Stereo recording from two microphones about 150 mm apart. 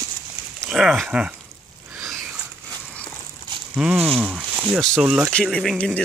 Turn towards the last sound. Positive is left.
turn(degrees=5)  # may be behind; listen again after turning